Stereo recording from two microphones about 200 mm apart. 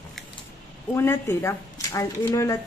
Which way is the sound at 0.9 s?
15° left (ahead or behind).